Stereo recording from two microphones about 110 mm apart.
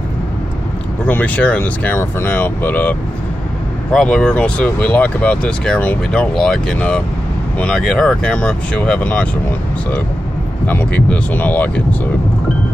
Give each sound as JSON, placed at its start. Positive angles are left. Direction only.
{"t": 1.0, "sound": "speech", "side_deg": 15}
{"t": 10.7, "sound": "speech", "side_deg": 15}